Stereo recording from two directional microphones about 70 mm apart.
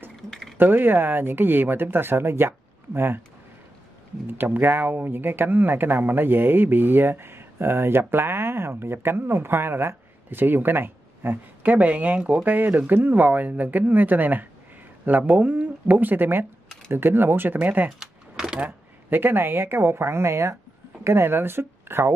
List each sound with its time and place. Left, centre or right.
0.1 s a sound: centre
0.6 s speech: right
4.3 s speech: right
12.4 s speech: right
17.9 s typing: centre
19.0 s speech: right